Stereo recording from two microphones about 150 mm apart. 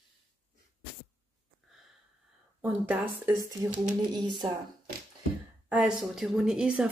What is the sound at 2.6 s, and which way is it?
Speech, 10° right (ahead or behind).